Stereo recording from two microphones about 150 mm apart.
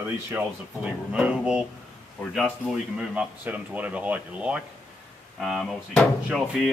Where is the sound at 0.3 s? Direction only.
10° right (ahead or behind).